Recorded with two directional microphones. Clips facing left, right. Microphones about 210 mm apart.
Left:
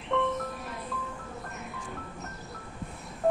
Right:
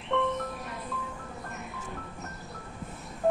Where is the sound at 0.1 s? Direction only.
Centre (ahead or behind).